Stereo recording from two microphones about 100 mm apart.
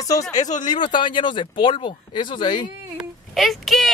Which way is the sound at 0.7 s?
50° left (ahead or behind).